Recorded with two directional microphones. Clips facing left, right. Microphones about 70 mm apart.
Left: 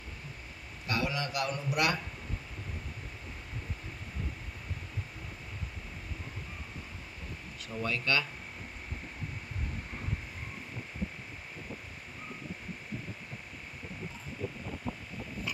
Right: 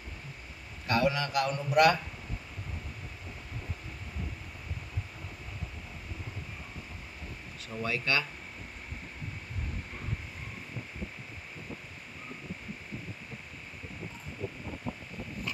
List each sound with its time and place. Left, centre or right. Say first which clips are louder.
0.8 s a man's voice: right 5 dB; right
7.7 s speech: even; centre